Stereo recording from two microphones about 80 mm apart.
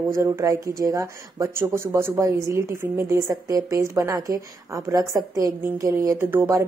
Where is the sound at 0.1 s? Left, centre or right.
Right.